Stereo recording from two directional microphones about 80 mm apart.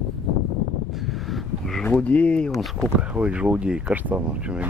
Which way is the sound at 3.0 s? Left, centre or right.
Centre.